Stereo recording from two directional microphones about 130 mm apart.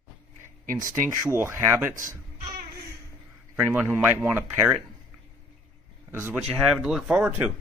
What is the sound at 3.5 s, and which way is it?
Speech, 15° right (ahead or behind).